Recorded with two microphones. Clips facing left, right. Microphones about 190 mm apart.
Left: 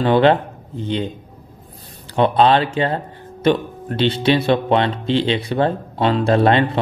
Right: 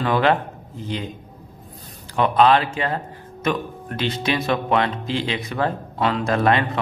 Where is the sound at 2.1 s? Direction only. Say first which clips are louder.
Left 2 dB; 30° left (ahead or behind).